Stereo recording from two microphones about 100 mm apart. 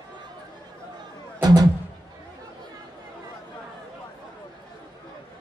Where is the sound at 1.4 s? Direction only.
40° right (ahead or behind).